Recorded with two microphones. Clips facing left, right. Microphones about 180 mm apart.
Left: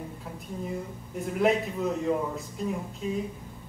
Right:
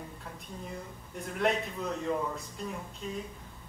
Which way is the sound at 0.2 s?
5° left (ahead or behind).